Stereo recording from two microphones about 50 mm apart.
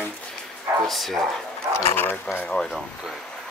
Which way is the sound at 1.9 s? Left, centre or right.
Left.